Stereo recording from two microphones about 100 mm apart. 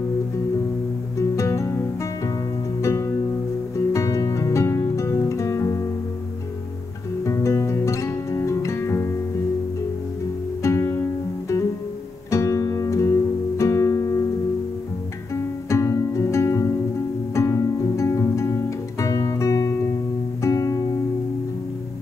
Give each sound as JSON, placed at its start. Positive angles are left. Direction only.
{"t": 1.1, "sound": "music", "side_deg": 30}
{"t": 2.8, "sound": "music", "side_deg": 30}
{"t": 7.2, "sound": "music", "side_deg": 30}
{"t": 10.6, "sound": "music", "side_deg": 25}
{"t": 12.3, "sound": "music", "side_deg": 30}
{"t": 15.7, "sound": "music", "side_deg": 30}